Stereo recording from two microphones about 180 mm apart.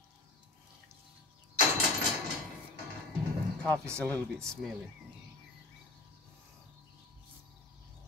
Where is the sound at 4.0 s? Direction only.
5° left (ahead or behind).